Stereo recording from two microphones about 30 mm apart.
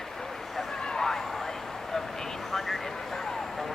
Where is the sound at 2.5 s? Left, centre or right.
Centre.